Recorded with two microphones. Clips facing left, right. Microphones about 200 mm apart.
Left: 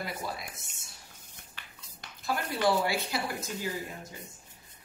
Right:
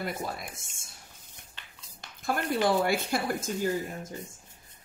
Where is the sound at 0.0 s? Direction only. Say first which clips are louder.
Right 3 dB; 50° right (ahead or behind).